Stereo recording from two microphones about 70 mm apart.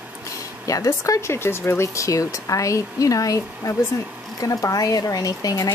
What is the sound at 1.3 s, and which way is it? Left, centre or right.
Speech, left.